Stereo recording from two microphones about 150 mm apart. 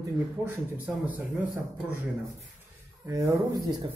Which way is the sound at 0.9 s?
5° right (ahead or behind).